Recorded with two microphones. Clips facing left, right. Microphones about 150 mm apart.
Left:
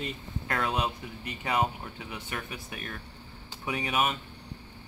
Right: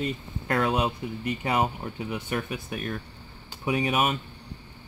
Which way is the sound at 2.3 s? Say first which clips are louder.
Right 7 dB; 35° right (ahead or behind).